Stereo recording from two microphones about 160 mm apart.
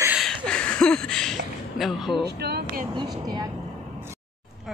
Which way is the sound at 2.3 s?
85° right.